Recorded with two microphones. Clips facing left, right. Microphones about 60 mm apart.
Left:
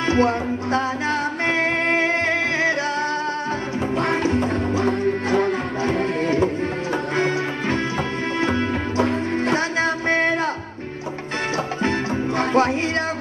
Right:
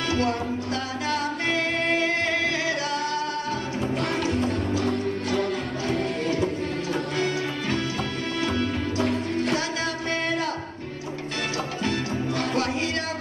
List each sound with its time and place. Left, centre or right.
0.0 s music: left
3.9 s music: left
11.8 s music: left